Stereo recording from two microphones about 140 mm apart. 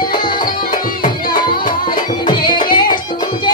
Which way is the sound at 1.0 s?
90° left.